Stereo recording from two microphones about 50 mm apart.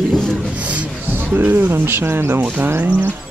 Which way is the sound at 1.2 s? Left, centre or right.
Right.